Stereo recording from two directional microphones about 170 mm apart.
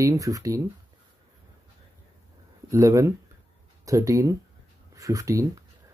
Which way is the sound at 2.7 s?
20° right (ahead or behind).